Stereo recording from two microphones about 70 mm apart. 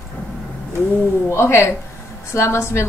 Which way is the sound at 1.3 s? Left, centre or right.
Left.